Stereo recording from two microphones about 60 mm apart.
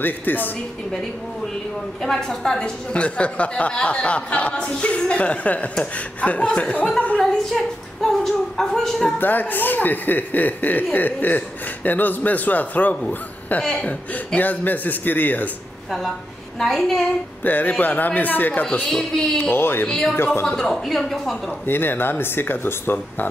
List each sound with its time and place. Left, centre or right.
0.0 s speech: left
2.0 s a woman's voice: centre; by 6.9 s left
7.2 s a sound: centre
9.2 s a woman's voice: left
16.5 s a woman's voice: centre
17.4 s a woman's voice: left
18.9 s a sound: centre
19.5 s speech: left
19.9 s a sound: centre
20.4 s a woman's voice: centre
21.6 s speech: left